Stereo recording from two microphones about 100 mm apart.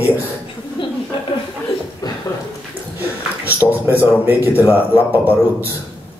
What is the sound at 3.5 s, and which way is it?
Speech, 20° right (ahead or behind).